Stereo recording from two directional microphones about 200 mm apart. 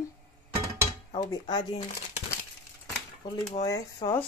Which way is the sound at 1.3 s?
20° left (ahead or behind).